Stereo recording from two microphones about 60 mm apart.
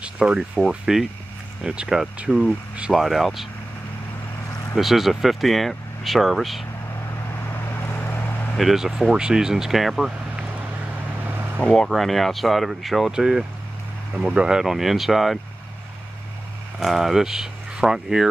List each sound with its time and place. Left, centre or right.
0.0 s a sound: centre
0.7 s speech: centre
2.9 s speech: centre
4.7 s speech: centre
7.4 s vehicle: left
8.5 s speech: centre
11.2 s vehicle: right
11.9 s speech: centre
16.8 s speech: centre